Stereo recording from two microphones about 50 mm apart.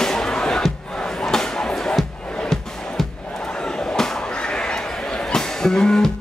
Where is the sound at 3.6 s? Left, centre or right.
Centre.